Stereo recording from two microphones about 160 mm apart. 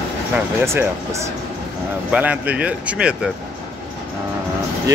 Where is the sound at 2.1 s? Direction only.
10° right (ahead or behind).